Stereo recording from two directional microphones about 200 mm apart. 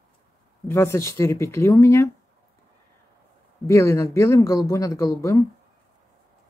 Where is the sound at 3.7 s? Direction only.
15° left (ahead or behind).